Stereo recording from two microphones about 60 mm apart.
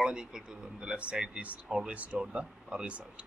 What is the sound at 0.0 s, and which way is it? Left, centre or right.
Speech, centre.